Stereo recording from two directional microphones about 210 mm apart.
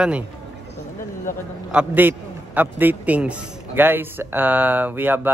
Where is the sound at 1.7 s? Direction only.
5° right (ahead or behind).